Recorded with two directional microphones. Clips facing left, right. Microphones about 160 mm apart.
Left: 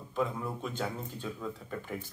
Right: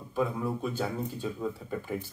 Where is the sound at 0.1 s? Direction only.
5° right (ahead or behind).